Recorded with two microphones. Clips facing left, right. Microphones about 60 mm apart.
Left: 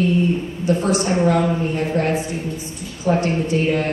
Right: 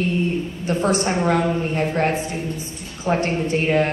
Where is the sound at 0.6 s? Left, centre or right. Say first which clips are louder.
Left 1 dB; right.